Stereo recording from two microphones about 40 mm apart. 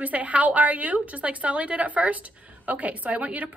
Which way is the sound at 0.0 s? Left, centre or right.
Right.